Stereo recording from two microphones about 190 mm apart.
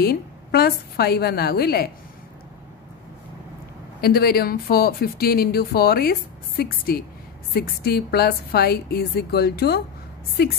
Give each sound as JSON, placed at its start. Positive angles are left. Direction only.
{"t": 0.0, "sound": "a woman's voice", "side_deg": 55}
{"t": 4.0, "sound": "a woman's voice", "side_deg": 55}